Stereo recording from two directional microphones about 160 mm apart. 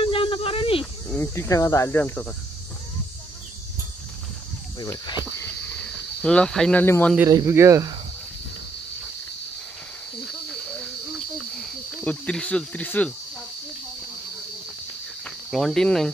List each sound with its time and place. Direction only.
0.0 s snake: 35° left (ahead or behind)
1.0 s cricket: 15° left (ahead or behind)
4.7 s cricket: 20° left (ahead or behind)
5.9 s speech: 5° left (ahead or behind)
7.2 s speech: 20° right (ahead or behind)
11.5 s speech: 5° left (ahead or behind)
15.2 s cricket: centre (ahead or behind)